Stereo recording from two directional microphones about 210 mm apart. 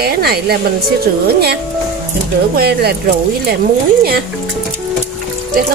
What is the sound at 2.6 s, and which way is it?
Speech, 50° right (ahead or behind).